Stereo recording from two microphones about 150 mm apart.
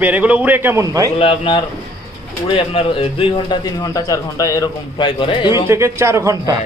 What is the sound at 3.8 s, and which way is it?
A man's voice, 25° left (ahead or behind).